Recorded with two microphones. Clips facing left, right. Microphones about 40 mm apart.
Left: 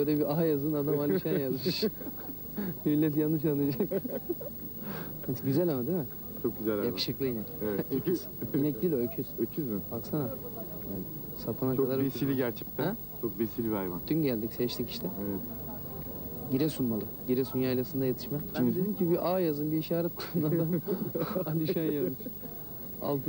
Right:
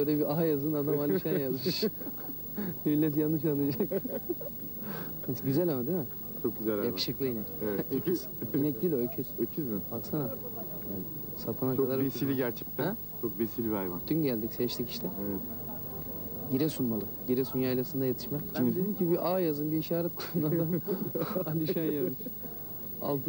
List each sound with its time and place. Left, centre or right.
0.0 s a man's voice: centre
2.5 s a man's voice: centre
3.8 s speech: centre
4.8 s a sound: centre
5.6 s speech: centre
8.6 s a man's voice: centre
11.4 s speech: centre
14.0 s a man's voice: centre
15.0 s speech: centre
16.4 s a man's voice: centre
21.8 s speech: centre
23.0 s a man's voice: centre